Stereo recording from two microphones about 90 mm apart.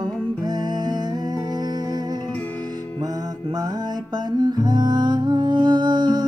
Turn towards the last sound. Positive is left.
turn(degrees=-60)  # may be behind; listen again after turning